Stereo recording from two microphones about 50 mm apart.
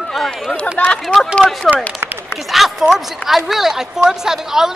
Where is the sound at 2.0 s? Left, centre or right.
Right.